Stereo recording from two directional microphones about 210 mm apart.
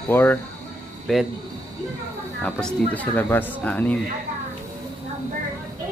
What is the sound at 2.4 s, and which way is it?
Speech, 5° left (ahead or behind).